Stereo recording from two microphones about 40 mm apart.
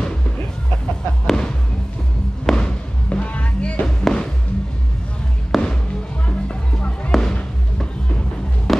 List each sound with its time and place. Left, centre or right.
1.2 s music: centre
2.4 s a sound: centre
3.1 s music: left
3.8 s music: centre
5.5 s music: centre
6.5 s music: left
7.1 s music: centre
8.7 s music: centre